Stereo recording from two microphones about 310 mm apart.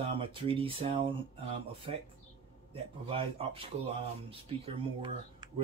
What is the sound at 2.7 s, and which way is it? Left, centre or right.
Speech, centre.